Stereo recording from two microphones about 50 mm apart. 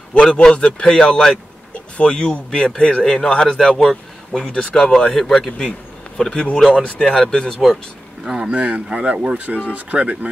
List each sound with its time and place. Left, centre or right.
0.1 s speech: centre
8.3 s speech: centre
8.5 s speech: right